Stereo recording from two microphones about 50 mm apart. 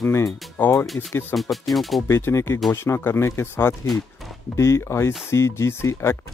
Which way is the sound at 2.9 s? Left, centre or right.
Left.